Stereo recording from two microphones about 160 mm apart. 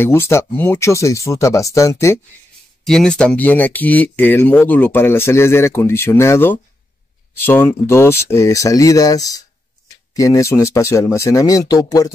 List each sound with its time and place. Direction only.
0.0 s speech: 15° left (ahead or behind)
2.8 s speech: 5° left (ahead or behind); by 12.1 s 25° left (ahead or behind)